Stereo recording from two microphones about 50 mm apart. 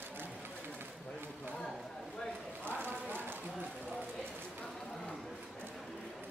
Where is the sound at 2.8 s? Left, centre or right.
Right.